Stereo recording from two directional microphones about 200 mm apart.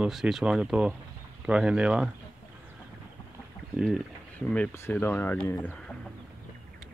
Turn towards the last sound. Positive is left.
turn(degrees=10)  # may be behind; listen again after turning